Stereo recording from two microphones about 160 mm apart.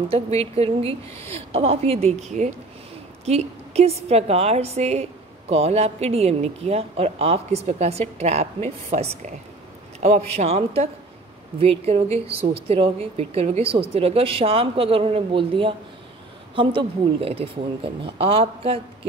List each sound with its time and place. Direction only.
0.1 s a woman's voice: 40° right (ahead or behind)